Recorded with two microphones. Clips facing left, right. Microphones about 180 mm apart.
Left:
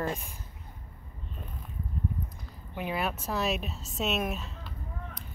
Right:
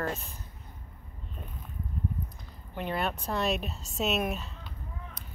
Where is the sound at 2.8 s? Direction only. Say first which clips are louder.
Even; 5° left (ahead or behind).